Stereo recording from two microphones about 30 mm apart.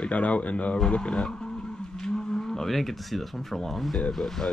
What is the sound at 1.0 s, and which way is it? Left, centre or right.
Speech, left.